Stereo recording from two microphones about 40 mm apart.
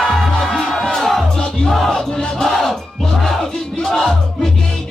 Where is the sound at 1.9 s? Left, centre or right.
Centre.